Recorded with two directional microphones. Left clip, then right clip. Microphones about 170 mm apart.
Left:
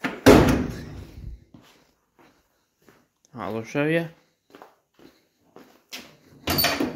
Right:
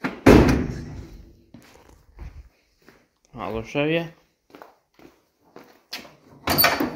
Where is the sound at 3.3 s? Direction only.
20° left (ahead or behind).